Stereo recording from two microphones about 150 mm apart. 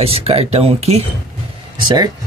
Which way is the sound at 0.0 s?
40° right (ahead or behind).